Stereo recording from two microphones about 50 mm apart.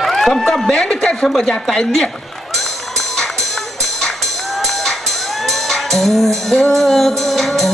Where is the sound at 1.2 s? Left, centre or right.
Centre.